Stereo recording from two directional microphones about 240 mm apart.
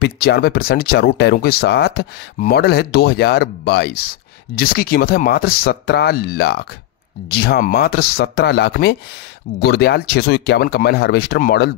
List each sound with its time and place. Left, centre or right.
0.0 s speech: left